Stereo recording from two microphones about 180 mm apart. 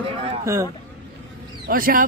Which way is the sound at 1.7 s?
50° right (ahead or behind).